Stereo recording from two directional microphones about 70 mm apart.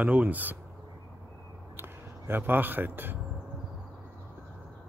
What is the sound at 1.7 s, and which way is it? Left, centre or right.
Speech, right.